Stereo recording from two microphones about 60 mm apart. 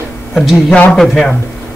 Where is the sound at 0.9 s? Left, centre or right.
Centre.